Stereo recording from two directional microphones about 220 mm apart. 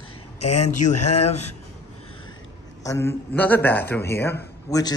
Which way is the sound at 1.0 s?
30° left (ahead or behind).